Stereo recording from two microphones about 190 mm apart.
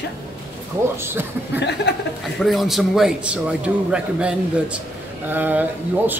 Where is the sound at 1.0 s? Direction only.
10° right (ahead or behind).